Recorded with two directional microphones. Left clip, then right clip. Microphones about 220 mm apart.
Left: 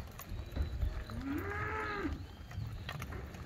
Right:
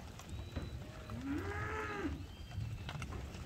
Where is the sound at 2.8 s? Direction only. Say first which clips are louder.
Left 3 dB; 25° left (ahead or behind).